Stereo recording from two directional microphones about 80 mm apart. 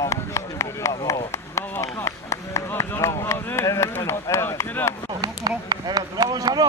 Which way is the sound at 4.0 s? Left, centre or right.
Left.